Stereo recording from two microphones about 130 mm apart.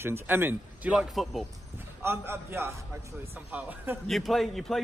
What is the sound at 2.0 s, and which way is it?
A man's voice, 20° right (ahead or behind).